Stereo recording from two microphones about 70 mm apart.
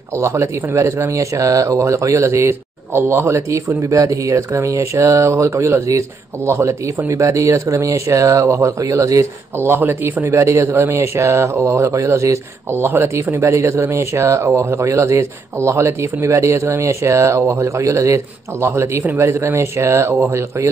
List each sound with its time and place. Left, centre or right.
0.2 s speech: right
9.6 s speech: right
12.7 s speech: right